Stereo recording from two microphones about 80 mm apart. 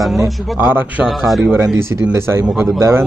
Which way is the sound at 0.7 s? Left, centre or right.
Right.